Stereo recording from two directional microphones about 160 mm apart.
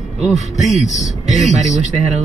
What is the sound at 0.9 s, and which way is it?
Speech, 50° left (ahead or behind).